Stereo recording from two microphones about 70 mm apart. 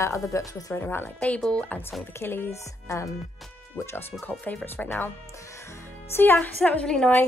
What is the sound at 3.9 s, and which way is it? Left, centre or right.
Speech, left.